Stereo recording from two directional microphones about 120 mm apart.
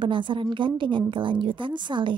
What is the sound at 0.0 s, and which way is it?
A woman's voice, 45° right (ahead or behind).